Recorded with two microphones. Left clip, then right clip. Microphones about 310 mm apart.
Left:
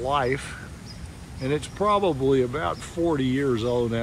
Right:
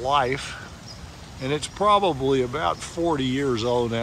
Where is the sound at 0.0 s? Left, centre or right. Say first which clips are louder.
Right 2 dB; centre.